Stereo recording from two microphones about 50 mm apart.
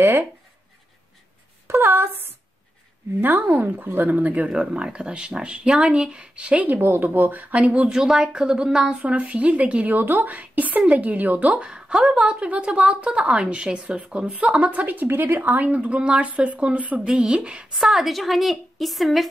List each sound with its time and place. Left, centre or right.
0.0 s speech: right
1.7 s a woman's voice: right
4.5 s a woman's voice: centre
6.8 s a woman's voice: right
7.5 s a woman's voice: right
8.0 s a woman's voice: centre
9.0 s a woman's voice: right
9.9 s a woman's voice: right; by 14.7 s centre
14.7 s a woman's voice: right
15.0 s a woman's voice: right
15.5 s a woman's voice: right
17.0 s a woman's voice: centre
17.7 s a woman's voice: centre